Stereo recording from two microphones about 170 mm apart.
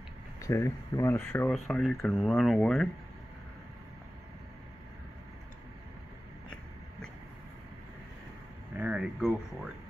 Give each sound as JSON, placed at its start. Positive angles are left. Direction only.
{"t": 0.4, "sound": "speech", "side_deg": 15}
{"t": 1.5, "sound": "speech", "side_deg": 0}
{"t": 8.7, "sound": "a sound", "side_deg": -5}